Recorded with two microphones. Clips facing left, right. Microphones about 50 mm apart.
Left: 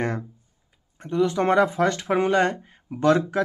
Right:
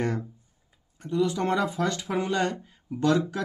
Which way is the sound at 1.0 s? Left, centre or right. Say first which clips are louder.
Left 4 dB; left.